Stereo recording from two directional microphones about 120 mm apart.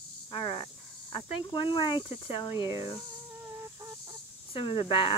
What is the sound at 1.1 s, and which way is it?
Speech, 45° left (ahead or behind).